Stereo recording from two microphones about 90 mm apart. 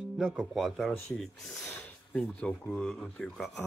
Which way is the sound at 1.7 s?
20° left (ahead or behind).